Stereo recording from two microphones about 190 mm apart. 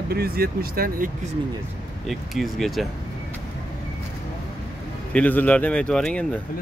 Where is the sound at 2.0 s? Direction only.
Centre (ahead or behind).